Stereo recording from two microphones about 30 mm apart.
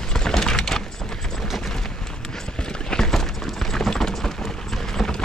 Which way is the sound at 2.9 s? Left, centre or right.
Centre.